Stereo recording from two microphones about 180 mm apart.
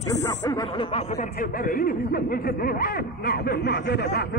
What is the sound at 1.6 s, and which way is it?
Speech, 55° left (ahead or behind).